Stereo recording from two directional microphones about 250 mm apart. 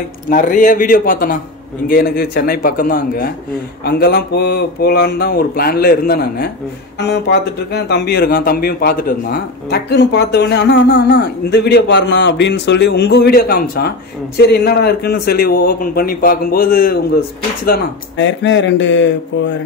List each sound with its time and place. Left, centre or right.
0.3 s speech: left